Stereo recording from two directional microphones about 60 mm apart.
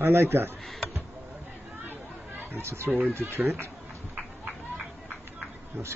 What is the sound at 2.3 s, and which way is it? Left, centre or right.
Speech, right.